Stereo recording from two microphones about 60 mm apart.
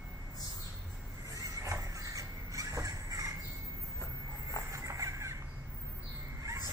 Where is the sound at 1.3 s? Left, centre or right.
Right.